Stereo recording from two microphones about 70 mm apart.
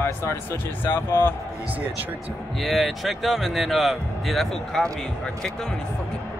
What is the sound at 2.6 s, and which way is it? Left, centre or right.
Speech, centre.